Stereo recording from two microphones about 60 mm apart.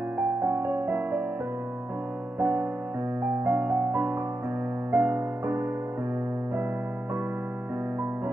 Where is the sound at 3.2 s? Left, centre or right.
Right.